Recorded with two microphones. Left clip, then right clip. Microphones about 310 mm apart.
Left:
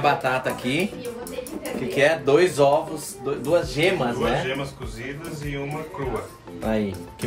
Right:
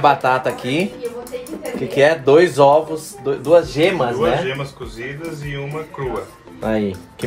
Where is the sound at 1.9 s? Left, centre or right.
Right.